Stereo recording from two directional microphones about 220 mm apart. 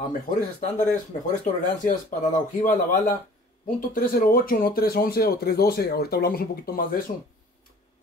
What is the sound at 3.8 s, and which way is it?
Speech, 40° left (ahead or behind).